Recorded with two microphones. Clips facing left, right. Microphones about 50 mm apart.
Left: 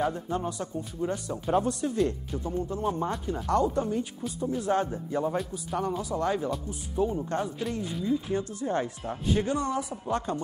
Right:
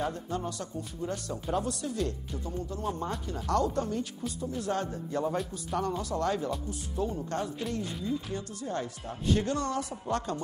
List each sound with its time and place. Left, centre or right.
0.1 s a man's voice: centre
7.8 s speech: centre
8.3 s speech: left
9.3 s a man's voice: centre